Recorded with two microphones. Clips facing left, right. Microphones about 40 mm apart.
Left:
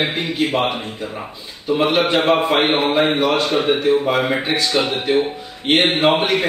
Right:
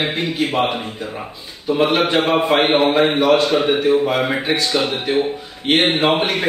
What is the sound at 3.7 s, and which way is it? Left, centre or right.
Speech, right.